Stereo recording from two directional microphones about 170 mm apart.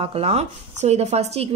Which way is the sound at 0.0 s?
35° right (ahead or behind).